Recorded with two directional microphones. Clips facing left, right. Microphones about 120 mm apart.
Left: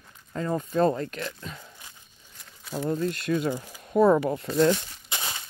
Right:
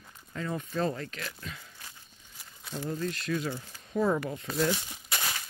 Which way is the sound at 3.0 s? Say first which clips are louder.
Left 4 dB; 40° left (ahead or behind).